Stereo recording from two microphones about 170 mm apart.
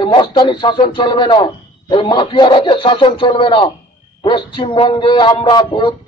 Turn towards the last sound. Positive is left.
turn(degrees=25)  # may be behind; listen again after turning